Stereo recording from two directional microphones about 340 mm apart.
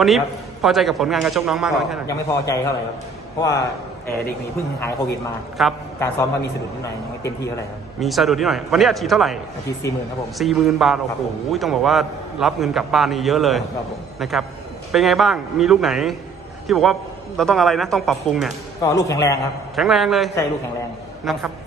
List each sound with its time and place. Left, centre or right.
0.0 s a man's voice: centre
2.0 s a man's voice: centre
5.6 s a man's voice: centre